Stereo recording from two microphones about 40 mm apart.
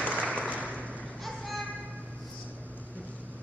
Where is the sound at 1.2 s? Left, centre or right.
Centre.